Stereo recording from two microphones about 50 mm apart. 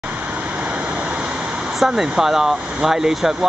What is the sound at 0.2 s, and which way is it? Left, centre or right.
Vehicle, right.